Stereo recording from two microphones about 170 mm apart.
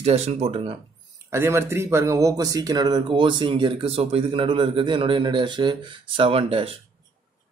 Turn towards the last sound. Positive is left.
turn(degrees=-35)  # may be behind; listen again after turning